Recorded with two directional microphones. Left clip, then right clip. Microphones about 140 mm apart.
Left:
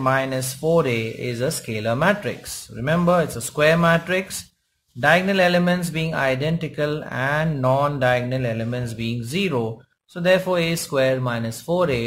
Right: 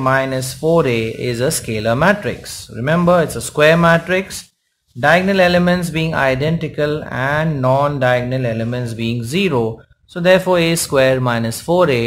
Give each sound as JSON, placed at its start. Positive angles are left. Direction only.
{"t": 0.0, "sound": "speech", "side_deg": -5}